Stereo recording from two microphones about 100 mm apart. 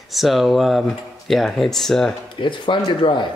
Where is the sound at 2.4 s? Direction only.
55° left (ahead or behind).